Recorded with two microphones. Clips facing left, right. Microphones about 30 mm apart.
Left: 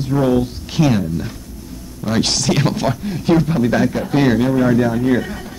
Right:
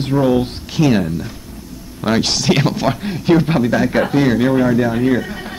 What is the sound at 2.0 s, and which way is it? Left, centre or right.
Speech, right.